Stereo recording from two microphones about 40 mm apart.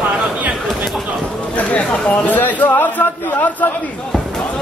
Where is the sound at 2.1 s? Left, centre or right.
Left.